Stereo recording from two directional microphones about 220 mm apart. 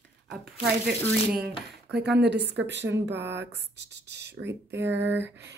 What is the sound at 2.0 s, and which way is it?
Speech, 50° right (ahead or behind).